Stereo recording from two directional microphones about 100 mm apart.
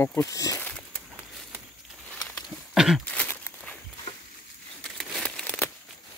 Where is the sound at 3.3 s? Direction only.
20° left (ahead or behind).